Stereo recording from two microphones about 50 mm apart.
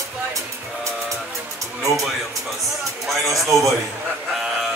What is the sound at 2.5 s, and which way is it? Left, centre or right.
Speech, centre.